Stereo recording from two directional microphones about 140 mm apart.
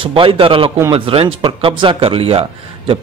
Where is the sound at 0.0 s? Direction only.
40° right (ahead or behind).